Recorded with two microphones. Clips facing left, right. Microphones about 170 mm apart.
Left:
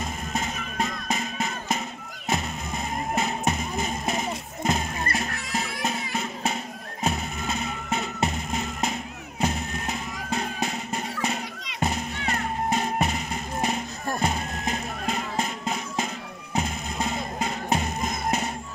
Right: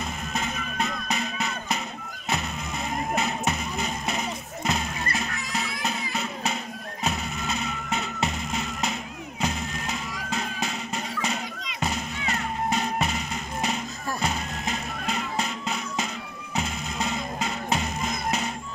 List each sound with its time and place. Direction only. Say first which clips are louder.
3.4 s music: left 2 dB; 45° left (ahead or behind)
7.0 s music: left 2 dB; 45° left (ahead or behind)